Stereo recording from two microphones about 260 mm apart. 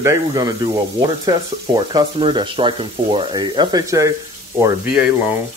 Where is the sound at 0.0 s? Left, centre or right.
Centre.